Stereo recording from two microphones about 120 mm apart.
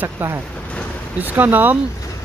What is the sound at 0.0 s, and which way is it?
Speech, 20° right (ahead or behind).